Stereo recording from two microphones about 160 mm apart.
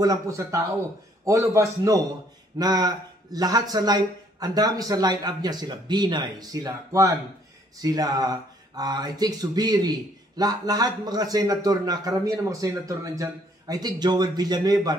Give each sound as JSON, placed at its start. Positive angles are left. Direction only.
{"t": 0.0, "sound": "speech", "side_deg": -20}